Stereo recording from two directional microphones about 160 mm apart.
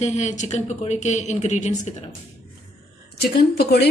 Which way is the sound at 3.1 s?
85° left.